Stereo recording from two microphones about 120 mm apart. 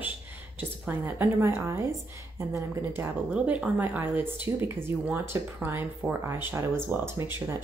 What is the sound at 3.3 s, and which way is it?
Speech, 10° right (ahead or behind).